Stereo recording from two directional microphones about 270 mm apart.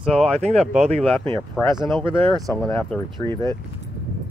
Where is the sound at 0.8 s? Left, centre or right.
Right.